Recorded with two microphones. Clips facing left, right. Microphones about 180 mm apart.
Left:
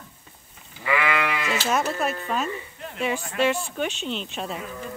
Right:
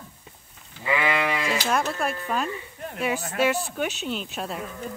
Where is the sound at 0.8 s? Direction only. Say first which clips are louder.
Even; 25° right (ahead or behind).